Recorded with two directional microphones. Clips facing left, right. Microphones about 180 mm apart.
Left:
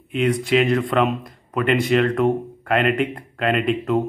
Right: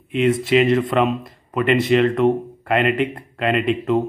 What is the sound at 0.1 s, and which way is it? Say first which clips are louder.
Speech: right 2 dB; centre (ahead or behind).